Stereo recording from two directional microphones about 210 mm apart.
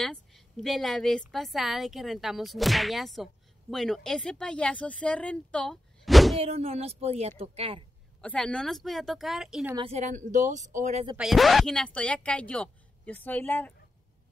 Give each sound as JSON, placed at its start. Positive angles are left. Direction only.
{"t": 0.0, "sound": "a woman's voice", "side_deg": 0}
{"t": 6.4, "sound": "speech", "side_deg": -30}
{"t": 8.2, "sound": "a woman's voice", "side_deg": 5}
{"t": 9.8, "sound": "a woman's voice", "side_deg": -30}
{"t": 11.1, "sound": "a woman's voice", "side_deg": 0}